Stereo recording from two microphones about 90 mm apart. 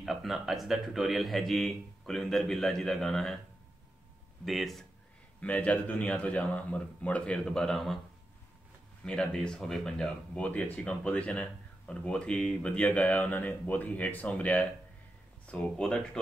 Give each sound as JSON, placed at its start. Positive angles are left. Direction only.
{"t": 0.0, "sound": "a man's voice", "side_deg": 0}
{"t": 4.5, "sound": "a man's voice", "side_deg": 0}
{"t": 5.4, "sound": "speech", "side_deg": 15}
{"t": 9.0, "sound": "speech", "side_deg": 10}